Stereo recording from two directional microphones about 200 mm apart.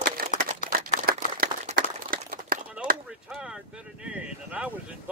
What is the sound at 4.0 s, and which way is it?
Speech, 5° right (ahead or behind).